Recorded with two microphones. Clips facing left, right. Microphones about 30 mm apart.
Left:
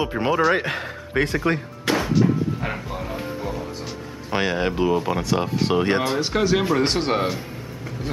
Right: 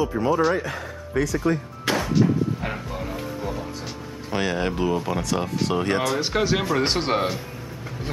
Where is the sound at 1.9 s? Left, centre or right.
Centre.